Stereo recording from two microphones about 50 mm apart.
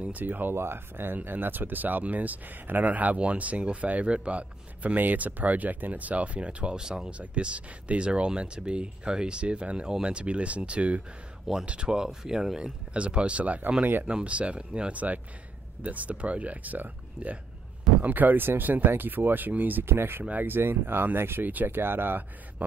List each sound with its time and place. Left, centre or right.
0.0 s speech: right
0.6 s speech: right; by 12.7 s centre
12.9 s speech: right
19.8 s speech: right
22.6 s speech: right